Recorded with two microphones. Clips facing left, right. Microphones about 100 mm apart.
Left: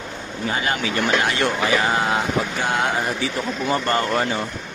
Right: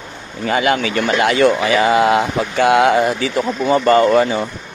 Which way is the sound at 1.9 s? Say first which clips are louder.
Right 7 dB; 90° right.